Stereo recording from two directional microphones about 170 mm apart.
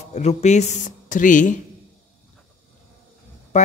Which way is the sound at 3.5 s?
45° left (ahead or behind).